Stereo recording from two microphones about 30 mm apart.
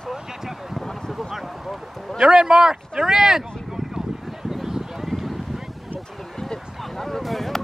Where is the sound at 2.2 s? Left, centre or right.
Right; by 5.3 s centre.